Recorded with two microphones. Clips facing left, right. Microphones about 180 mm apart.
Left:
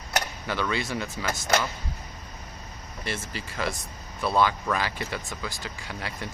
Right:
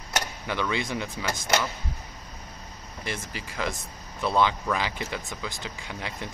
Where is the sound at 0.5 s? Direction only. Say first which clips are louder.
Even; 15° right (ahead or behind).